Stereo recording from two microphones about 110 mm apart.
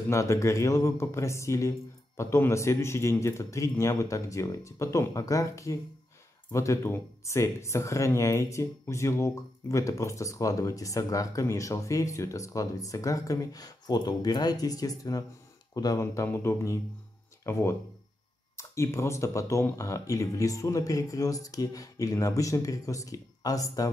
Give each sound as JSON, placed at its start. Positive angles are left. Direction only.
{"t": 0.1, "sound": "speech", "side_deg": 25}